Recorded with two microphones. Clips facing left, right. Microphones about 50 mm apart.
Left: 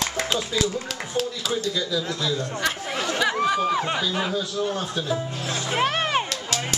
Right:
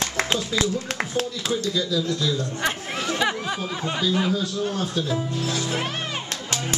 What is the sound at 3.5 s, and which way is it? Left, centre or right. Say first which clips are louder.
Speech: left 6 dB; left.